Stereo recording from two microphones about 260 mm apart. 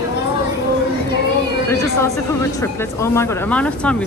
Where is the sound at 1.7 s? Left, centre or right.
Centre.